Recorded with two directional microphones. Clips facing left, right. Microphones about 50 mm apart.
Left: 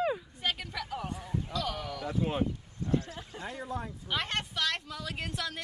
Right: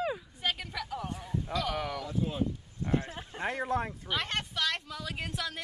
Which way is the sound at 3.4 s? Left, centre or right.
Right.